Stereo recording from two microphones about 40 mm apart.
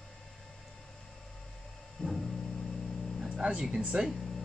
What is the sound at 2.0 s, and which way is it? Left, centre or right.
Music, left.